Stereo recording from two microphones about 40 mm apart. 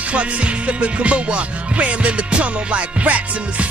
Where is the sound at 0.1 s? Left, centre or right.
Right.